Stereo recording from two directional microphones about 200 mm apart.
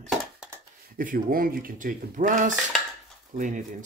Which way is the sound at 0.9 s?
45° right (ahead or behind).